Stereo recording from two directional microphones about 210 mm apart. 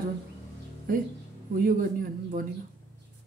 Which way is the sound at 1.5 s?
45° right (ahead or behind).